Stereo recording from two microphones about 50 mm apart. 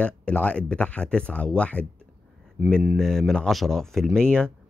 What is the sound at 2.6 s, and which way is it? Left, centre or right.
Speech, centre.